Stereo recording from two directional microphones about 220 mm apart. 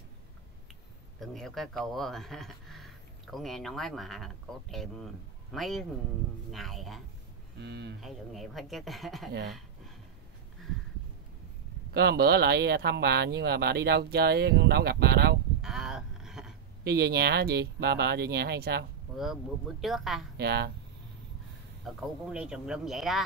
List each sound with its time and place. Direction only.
1.2 s speech: centre (ahead or behind)
7.5 s speech: 50° right (ahead or behind)
8.0 s speech: centre (ahead or behind)
11.9 s speech: 50° right (ahead or behind)
15.6 s a sound: centre (ahead or behind)
16.8 s speech: 45° right (ahead or behind)
19.8 s speech: centre (ahead or behind)
20.3 s speech: 45° right (ahead or behind)
21.8 s speech: 5° right (ahead or behind)